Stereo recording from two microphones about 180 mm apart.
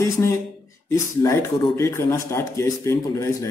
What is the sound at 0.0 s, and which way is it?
Speech, 15° left (ahead or behind).